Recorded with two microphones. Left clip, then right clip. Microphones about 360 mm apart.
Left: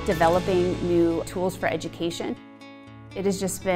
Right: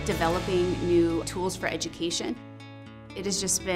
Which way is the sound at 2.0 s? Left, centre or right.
Left.